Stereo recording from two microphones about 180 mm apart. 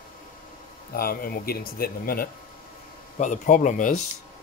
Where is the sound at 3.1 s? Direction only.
45° left (ahead or behind).